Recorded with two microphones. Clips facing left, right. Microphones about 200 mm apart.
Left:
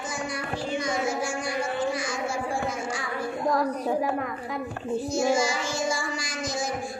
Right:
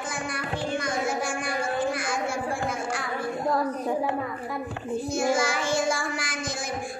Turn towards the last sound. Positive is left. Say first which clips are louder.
# right 1 dB
turn(degrees=-55)  # may be behind; listen again after turning